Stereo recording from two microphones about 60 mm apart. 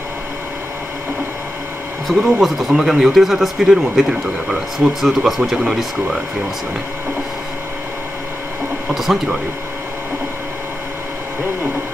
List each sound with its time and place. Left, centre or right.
2.0 s speech: centre
8.9 s speech: centre